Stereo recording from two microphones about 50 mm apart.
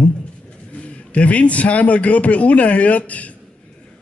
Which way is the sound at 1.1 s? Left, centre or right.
Left.